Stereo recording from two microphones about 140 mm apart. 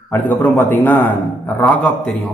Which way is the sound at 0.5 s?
15° left (ahead or behind).